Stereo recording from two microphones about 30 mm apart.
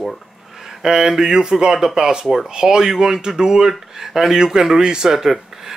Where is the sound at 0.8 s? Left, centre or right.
Centre.